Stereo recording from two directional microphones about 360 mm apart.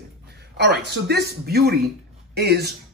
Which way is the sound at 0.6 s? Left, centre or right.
Right.